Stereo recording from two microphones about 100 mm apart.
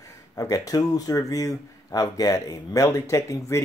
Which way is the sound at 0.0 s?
35° left (ahead or behind).